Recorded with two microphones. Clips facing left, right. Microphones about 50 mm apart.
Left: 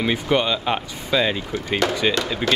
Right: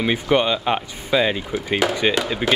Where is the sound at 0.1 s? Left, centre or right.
Centre.